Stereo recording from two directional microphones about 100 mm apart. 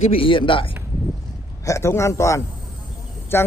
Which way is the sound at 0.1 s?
60° left (ahead or behind).